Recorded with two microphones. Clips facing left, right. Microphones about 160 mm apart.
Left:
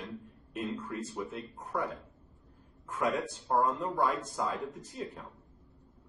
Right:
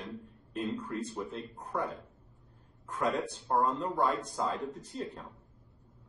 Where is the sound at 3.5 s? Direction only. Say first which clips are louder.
Even; 5° left (ahead or behind).